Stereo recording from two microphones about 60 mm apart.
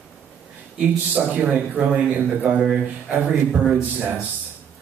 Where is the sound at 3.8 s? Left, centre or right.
Right.